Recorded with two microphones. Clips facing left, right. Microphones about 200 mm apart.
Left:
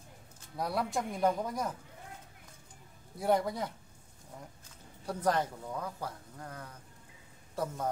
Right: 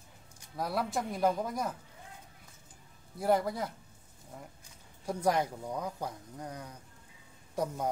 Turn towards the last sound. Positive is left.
turn(degrees=-15)  # may be behind; listen again after turning